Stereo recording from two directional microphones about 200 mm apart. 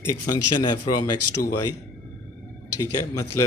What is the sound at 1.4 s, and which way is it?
Speech, 45° left (ahead or behind).